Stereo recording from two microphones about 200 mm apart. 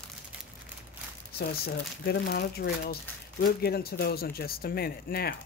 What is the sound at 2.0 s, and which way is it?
Speech, 55° left (ahead or behind).